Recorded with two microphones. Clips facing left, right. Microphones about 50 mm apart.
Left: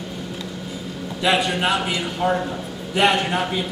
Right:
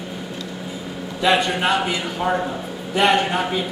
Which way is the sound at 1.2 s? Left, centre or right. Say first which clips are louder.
Right 2 dB; centre.